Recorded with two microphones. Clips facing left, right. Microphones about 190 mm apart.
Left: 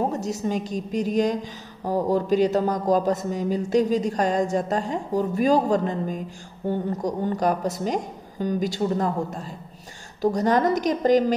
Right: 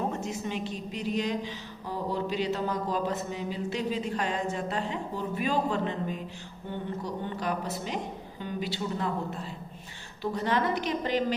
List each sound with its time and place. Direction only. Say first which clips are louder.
0.1 s a woman's voice: left 7 dB; 40° left (ahead or behind)